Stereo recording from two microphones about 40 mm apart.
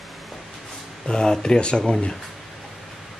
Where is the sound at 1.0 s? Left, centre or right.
Centre.